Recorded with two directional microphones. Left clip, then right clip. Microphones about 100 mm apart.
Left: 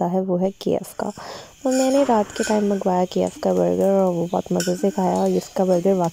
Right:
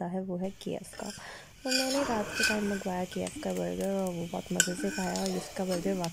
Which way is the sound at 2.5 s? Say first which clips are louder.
Left 13 dB; 45° left (ahead or behind).